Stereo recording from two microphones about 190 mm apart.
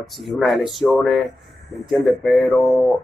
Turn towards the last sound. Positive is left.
turn(degrees=0)  # may be behind; listen again after turning